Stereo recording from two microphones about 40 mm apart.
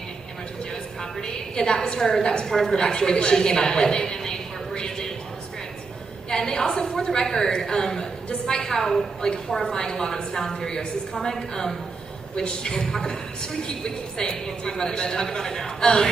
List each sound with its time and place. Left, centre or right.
1.2 s a woman's voice: centre
2.8 s a woman's voice: centre
6.3 s a woman's voice: centre